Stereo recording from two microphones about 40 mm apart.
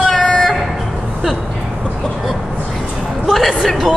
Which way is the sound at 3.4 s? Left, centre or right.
Centre.